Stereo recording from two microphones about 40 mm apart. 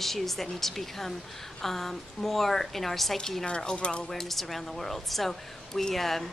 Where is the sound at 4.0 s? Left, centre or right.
Centre.